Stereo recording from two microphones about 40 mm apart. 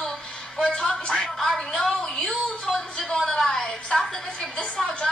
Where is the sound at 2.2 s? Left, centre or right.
Left.